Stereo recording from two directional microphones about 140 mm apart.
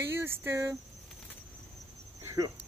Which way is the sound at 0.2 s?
15° right (ahead or behind).